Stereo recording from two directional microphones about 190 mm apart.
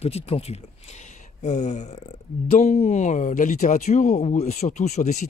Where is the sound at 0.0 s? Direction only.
35° left (ahead or behind).